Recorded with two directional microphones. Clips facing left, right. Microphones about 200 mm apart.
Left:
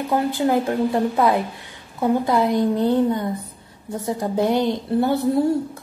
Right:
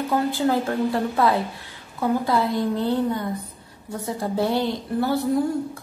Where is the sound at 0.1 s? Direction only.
15° left (ahead or behind).